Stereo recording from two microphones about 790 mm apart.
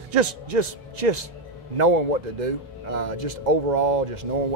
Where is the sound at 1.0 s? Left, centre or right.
Right.